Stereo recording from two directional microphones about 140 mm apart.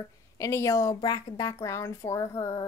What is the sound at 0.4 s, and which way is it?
Speech, 20° left (ahead or behind).